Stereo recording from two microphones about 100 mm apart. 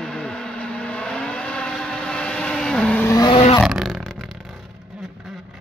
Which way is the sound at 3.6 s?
Centre (ahead or behind).